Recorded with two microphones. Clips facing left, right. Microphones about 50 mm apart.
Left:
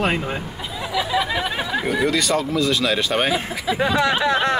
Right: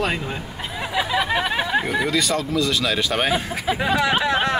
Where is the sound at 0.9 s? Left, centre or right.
Right.